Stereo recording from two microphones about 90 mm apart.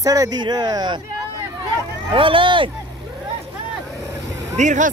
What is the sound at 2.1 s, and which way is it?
Speech, 75° right (ahead or behind).